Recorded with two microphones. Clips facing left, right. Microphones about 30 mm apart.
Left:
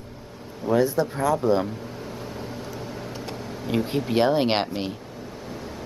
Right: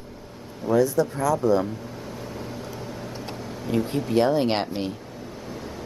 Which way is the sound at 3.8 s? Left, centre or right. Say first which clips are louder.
Even; left.